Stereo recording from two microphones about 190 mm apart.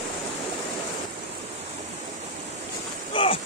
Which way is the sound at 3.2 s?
25° left (ahead or behind).